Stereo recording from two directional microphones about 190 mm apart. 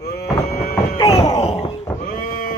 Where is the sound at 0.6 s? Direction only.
50° left (ahead or behind).